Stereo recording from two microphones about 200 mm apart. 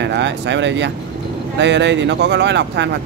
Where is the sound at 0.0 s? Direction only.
60° right (ahead or behind).